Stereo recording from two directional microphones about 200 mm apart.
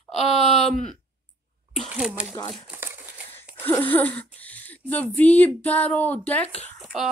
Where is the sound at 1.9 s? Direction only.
5° right (ahead or behind).